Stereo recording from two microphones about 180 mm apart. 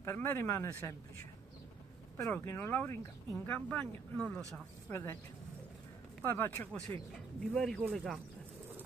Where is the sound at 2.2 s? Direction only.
10° left (ahead or behind).